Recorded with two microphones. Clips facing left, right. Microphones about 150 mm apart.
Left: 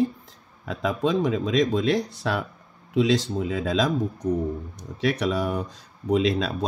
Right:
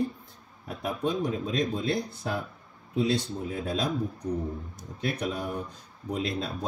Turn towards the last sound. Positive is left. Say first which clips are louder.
# left 9 dB
turn(degrees=90)